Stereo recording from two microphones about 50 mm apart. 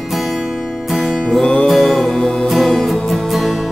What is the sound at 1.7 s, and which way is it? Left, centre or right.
Music, centre.